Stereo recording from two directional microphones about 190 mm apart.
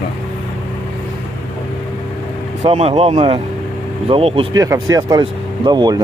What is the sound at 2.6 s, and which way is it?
Speech, 35° right (ahead or behind).